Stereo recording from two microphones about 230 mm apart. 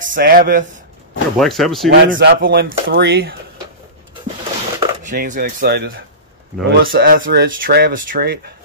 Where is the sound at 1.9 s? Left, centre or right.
Right.